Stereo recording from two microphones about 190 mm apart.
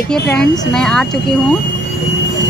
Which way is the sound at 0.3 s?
5° left (ahead or behind).